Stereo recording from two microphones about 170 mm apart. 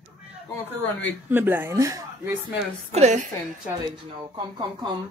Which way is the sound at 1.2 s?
10° right (ahead or behind).